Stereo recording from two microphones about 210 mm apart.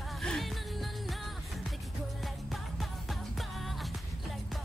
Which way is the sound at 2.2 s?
Centre (ahead or behind).